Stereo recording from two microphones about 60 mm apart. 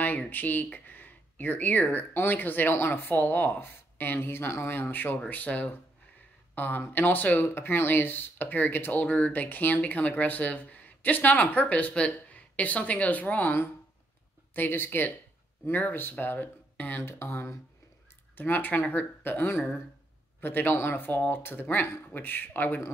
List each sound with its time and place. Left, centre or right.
0.0 s speech: left
17.0 s speech: left
18.3 s speech: left